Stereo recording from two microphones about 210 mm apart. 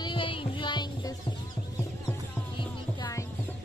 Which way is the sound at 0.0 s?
25° left (ahead or behind).